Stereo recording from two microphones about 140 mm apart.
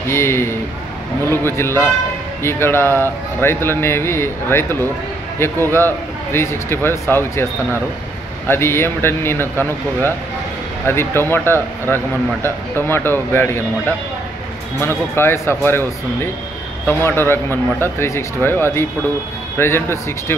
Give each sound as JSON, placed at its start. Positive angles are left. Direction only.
{"t": 0.1, "sound": "speech", "side_deg": 20}
{"t": 8.5, "sound": "speech", "side_deg": 15}